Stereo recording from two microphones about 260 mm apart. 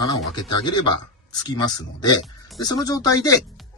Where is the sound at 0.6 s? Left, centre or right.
Centre.